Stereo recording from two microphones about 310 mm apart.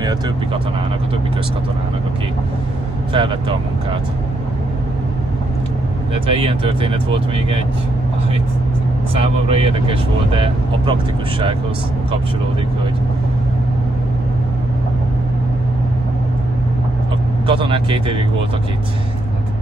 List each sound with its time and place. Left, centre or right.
3.1 s speech: centre
6.2 s speech: centre
9.1 s speech: centre
17.5 s speech: centre